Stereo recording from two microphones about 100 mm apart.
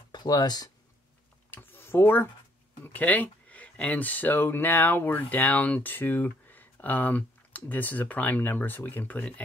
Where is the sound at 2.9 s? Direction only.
15° left (ahead or behind).